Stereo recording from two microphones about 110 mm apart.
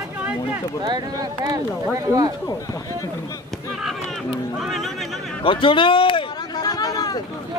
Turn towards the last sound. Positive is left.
turn(degrees=35)  # may be behind; listen again after turning